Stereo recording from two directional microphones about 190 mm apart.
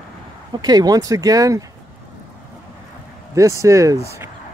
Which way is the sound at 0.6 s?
20° right (ahead or behind).